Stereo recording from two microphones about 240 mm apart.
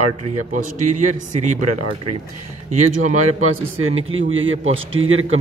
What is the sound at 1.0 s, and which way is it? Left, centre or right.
Speech, right.